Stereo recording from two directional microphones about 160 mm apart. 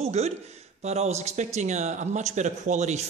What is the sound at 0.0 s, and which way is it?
Speech, 40° right (ahead or behind).